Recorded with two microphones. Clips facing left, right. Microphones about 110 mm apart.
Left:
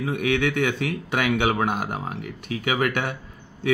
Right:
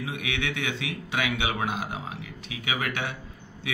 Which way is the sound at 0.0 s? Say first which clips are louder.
Left 9 dB; 50° left (ahead or behind).